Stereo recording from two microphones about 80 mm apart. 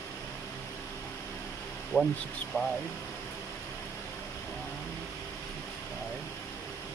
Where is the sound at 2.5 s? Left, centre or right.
Left.